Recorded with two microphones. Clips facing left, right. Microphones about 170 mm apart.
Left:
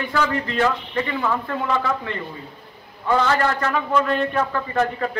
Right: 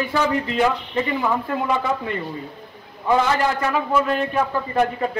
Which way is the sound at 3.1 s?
10° right (ahead or behind).